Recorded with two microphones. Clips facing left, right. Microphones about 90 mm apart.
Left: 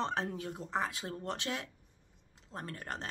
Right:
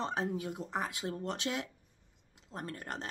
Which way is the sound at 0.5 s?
30° left (ahead or behind).